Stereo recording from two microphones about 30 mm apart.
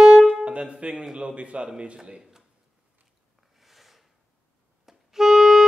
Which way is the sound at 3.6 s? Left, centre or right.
Centre.